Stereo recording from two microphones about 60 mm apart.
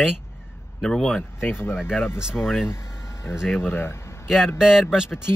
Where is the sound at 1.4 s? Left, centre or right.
Left.